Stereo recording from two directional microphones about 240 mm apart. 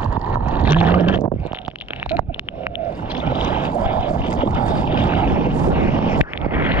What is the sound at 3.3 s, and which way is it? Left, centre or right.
Boat, centre.